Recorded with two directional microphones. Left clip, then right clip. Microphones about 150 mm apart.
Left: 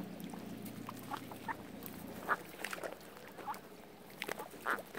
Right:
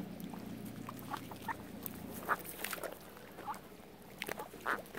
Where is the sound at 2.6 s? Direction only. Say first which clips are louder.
Even; 45° right (ahead or behind).